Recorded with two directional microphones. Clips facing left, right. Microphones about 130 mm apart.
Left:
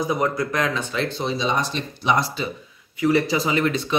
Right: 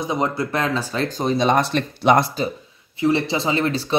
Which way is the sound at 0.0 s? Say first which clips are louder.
Even; 25° right (ahead or behind).